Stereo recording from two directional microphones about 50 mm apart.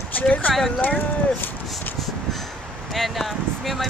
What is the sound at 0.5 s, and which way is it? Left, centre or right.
Speech, centre.